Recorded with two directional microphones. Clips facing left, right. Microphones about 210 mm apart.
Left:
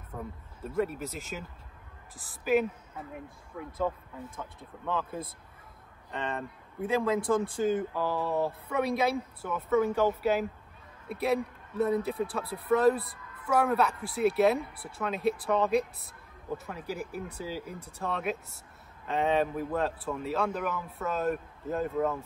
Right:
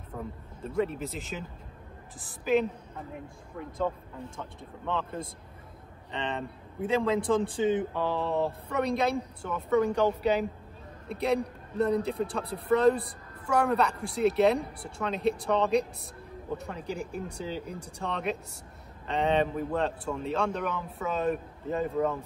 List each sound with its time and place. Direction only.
0.1 s speech: centre (ahead or behind)
13.0 s a sound: 30° right (ahead or behind)
13.5 s speech: centre (ahead or behind)